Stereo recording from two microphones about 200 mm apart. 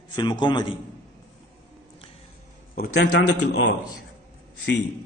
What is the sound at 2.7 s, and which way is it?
A man's voice, 50° left (ahead or behind).